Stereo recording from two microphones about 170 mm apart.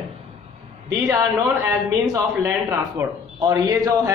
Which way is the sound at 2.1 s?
20° right (ahead or behind).